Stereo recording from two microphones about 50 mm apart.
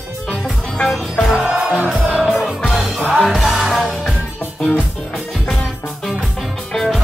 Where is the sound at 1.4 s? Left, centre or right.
Right.